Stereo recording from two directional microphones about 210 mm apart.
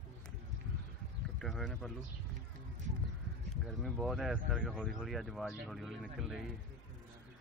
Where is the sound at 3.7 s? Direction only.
Centre (ahead or behind).